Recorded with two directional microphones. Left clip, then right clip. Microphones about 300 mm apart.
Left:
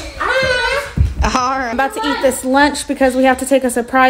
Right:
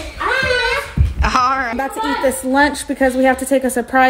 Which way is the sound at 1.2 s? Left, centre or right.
Centre.